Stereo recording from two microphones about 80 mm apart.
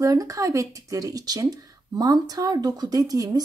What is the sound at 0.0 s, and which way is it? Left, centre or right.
A woman's voice, right.